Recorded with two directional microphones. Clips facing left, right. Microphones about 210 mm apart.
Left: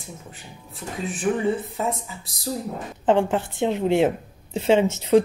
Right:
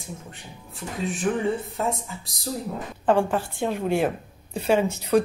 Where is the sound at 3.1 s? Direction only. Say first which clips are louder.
Left 2 dB; 20° left (ahead or behind).